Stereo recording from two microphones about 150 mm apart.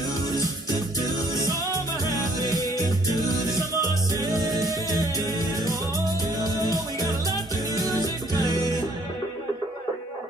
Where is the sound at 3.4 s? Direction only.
25° right (ahead or behind).